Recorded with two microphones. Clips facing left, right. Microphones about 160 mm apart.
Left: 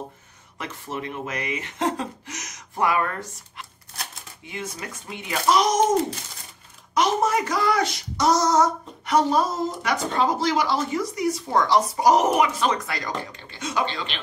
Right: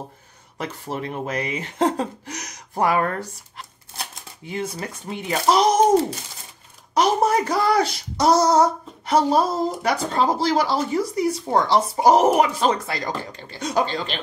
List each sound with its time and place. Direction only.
0.6 s speech: 35° right (ahead or behind)
6.9 s speech: 35° right (ahead or behind)